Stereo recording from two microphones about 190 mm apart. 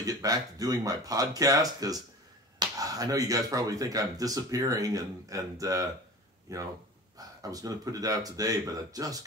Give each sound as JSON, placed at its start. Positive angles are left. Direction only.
{"t": 0.0, "sound": "speech", "side_deg": -20}